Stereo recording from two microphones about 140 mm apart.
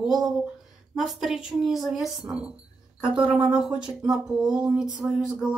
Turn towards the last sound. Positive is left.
turn(degrees=-5)  # may be behind; listen again after turning